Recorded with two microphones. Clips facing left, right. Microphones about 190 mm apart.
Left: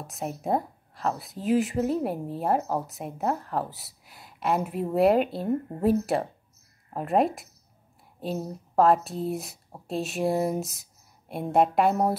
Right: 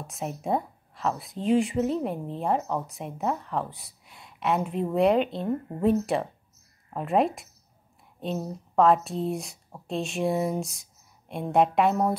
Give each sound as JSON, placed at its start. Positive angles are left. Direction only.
{"t": 0.0, "sound": "speech", "side_deg": 0}